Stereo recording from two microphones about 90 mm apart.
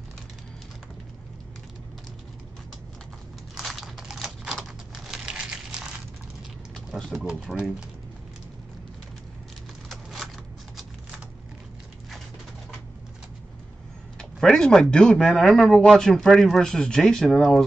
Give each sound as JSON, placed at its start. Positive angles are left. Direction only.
{"t": 3.5, "sound": "computer keyboard", "side_deg": 0}
{"t": 7.1, "sound": "speech", "side_deg": -5}
{"t": 9.8, "sound": "a sound", "side_deg": 0}
{"t": 14.1, "sound": "speech", "side_deg": 5}